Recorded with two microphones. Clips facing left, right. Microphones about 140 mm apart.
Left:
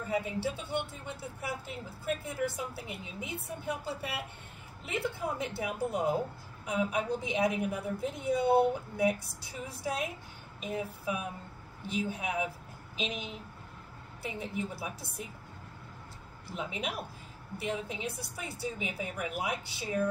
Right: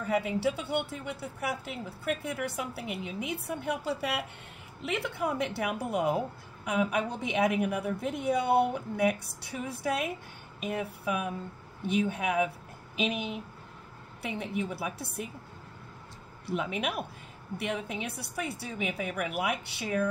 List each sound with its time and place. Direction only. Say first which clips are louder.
0.1 s a woman's voice: right 5 dB; 75° right (ahead or behind)
16.4 s a woman's voice: right 5 dB; 65° right (ahead or behind)